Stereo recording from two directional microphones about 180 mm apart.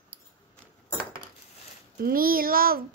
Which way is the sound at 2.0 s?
55° right (ahead or behind).